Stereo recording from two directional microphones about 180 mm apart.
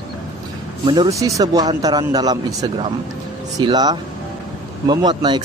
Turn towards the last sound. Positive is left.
turn(degrees=-25)  # may be behind; listen again after turning